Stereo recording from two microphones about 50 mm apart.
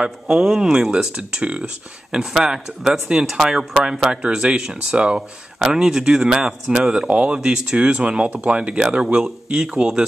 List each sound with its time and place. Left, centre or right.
0.0 s speech: centre